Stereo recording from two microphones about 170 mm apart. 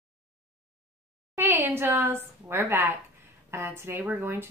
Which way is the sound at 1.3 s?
15° right (ahead or behind).